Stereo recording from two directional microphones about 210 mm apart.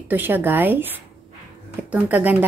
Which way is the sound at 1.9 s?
5° right (ahead or behind).